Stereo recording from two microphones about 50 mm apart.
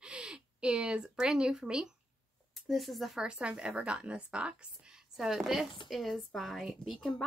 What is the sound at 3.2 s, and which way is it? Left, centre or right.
Speech, right.